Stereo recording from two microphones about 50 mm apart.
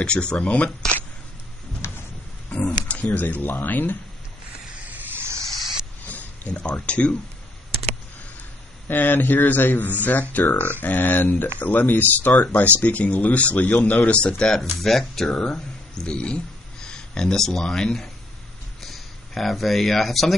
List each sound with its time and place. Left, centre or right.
0.0 s speech: left
1.8 s a sound: left
2.5 s speech: left
5.1 s hiss: right
6.0 s speech: left
8.8 s speech: left
14.4 s speech: centre